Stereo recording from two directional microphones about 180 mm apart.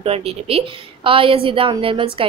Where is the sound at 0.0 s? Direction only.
35° right (ahead or behind).